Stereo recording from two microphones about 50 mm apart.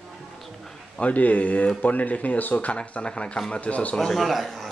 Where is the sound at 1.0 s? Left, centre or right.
Left.